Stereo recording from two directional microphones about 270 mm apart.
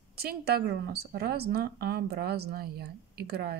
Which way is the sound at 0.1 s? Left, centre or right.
Right.